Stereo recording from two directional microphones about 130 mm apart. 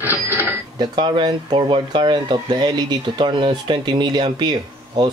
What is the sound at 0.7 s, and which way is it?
Speech, 35° right (ahead or behind).